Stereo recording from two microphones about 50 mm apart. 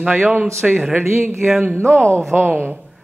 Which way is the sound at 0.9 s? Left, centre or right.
Right.